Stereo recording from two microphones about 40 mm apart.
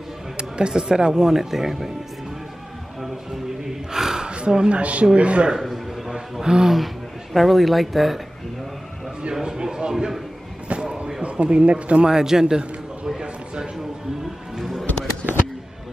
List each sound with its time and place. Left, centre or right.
0.4 s speech: right
3.6 s gasp: centre
4.3 s speech: right
5.6 s a sound: centre
6.4 s speech: centre
7.3 s speech: centre
9.3 s a sound: centre
11.2 s speech: right
12.1 s a sound: centre
14.6 s music: centre